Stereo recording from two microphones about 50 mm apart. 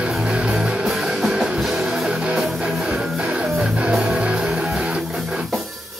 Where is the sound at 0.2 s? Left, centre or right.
Centre.